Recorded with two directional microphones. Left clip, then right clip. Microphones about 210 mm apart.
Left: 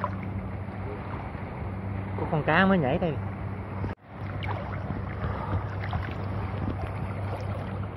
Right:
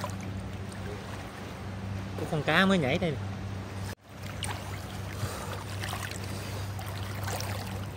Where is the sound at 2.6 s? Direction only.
25° right (ahead or behind).